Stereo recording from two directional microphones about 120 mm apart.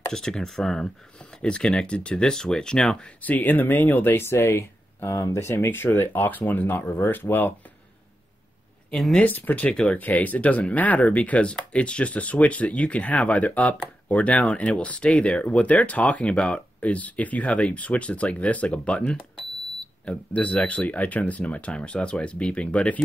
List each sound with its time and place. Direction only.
0.1 s speech: 5° left (ahead or behind)
8.9 s speech: 5° left (ahead or behind)